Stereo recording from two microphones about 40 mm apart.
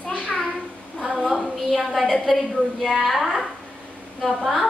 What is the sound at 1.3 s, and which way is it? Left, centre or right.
A woman's voice, centre.